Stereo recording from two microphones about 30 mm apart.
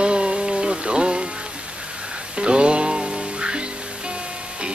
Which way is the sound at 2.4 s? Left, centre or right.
Right.